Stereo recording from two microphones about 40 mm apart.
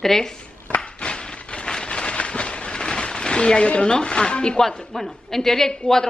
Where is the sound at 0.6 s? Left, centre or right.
Left.